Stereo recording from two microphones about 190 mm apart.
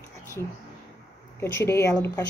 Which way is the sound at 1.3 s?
15° left (ahead or behind).